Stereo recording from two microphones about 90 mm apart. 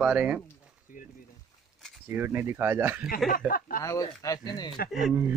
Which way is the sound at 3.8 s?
40° left (ahead or behind).